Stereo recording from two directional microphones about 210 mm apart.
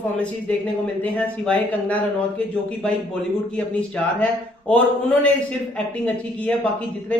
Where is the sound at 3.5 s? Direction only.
5° left (ahead or behind).